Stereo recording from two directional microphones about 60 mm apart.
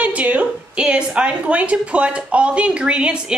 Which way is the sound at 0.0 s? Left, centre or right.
Right.